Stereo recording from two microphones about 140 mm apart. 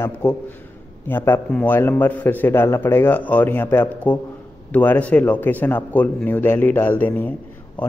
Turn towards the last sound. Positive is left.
turn(degrees=10)  # may be behind; listen again after turning